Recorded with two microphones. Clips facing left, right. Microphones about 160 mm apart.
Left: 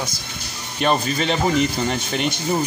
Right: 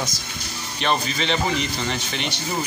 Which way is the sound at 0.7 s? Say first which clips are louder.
Left 4 dB; 45° left (ahead or behind).